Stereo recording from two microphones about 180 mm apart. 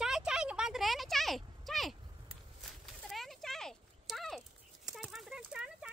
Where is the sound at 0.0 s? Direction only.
5° right (ahead or behind).